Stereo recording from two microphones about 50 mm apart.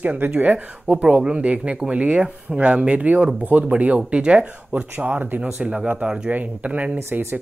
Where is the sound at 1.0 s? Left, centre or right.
Right.